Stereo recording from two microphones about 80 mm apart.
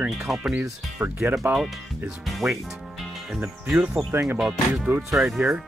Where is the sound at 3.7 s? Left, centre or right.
Centre.